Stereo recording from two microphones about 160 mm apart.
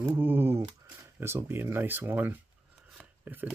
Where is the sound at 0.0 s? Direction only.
10° right (ahead or behind).